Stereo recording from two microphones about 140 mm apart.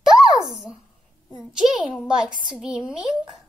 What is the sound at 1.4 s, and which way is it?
A child's voice, 5° right (ahead or behind).